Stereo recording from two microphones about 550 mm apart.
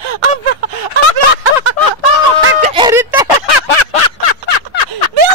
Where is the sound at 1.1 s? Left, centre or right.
Right.